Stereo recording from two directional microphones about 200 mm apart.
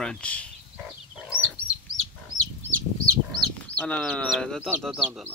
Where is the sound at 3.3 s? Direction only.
5° left (ahead or behind).